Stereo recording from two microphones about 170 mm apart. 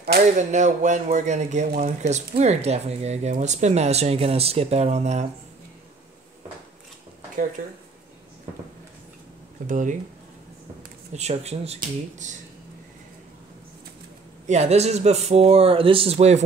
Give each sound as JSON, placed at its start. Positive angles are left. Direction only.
{"t": 0.4, "sound": "speech", "side_deg": -45}
{"t": 7.6, "sound": "speech", "side_deg": -55}
{"t": 9.7, "sound": "speech", "side_deg": -50}
{"t": 11.1, "sound": "speech", "side_deg": -40}
{"t": 14.5, "sound": "speech", "side_deg": -40}